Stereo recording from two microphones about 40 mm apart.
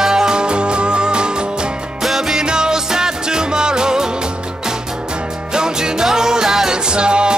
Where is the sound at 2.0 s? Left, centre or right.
Centre.